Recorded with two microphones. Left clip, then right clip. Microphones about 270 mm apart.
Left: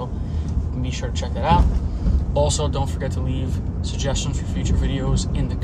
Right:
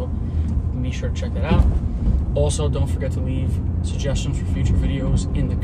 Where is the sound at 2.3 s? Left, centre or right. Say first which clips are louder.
Left 2 dB; centre.